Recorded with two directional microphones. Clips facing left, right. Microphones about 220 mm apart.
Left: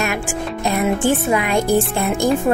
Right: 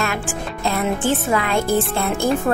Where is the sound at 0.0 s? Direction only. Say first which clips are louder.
Left 2 dB; 15° left (ahead or behind).